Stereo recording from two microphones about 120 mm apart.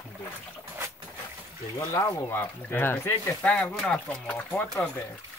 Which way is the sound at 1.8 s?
30° left (ahead or behind).